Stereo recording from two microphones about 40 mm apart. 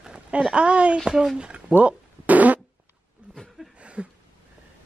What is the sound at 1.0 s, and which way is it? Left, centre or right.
Speech, centre.